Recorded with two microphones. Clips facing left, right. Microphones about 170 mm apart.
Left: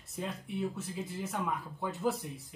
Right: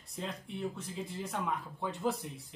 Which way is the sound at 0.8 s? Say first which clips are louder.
Left 2 dB; 5° left (ahead or behind).